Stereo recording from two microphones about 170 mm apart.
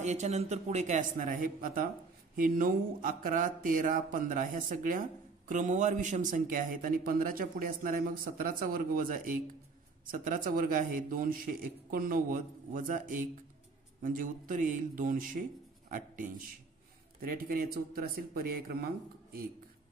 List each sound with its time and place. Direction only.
0.0 s a man's voice: 45° right (ahead or behind); by 18.9 s 65° right (ahead or behind)